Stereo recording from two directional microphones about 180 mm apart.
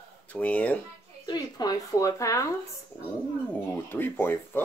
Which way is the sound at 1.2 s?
20° left (ahead or behind).